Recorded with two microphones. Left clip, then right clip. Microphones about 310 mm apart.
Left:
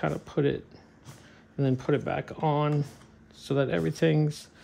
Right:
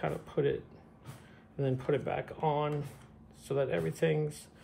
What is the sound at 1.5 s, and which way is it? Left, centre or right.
Speech, left.